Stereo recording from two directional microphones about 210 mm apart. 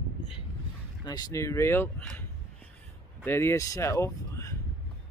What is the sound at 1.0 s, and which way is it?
Speech, 20° left (ahead or behind).